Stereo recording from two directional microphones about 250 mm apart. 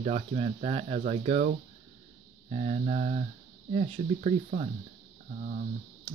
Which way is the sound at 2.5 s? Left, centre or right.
Right.